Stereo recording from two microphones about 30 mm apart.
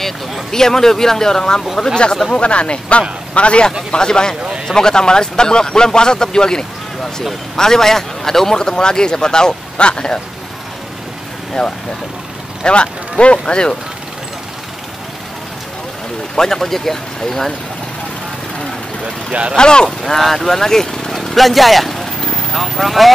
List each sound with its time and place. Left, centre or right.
0.0 s speech: centre
2.3 s speech: left
3.9 s speech: left
11.6 s speech: left
12.6 s speech: left
16.3 s speech: centre
19.5 s speech: left
20.2 s speech: centre
21.1 s vehicle: centre